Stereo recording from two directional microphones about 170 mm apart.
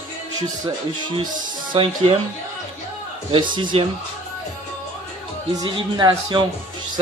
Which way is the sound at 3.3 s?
30° right (ahead or behind).